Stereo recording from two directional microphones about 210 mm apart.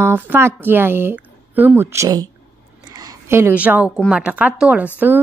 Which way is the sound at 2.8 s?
20° right (ahead or behind).